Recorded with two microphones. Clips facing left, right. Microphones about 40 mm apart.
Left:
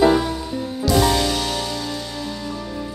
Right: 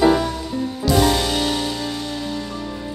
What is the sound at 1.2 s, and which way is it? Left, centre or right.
Music, centre.